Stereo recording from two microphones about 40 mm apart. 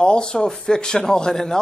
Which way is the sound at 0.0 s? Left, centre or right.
Left.